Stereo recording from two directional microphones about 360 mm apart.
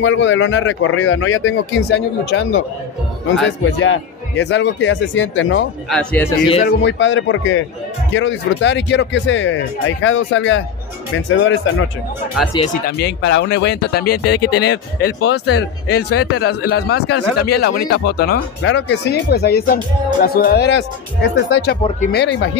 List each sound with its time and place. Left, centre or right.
0.0 s speech: left
3.8 s speech: left
5.9 s speech: centre
6.5 s speech: left
12.5 s speech: left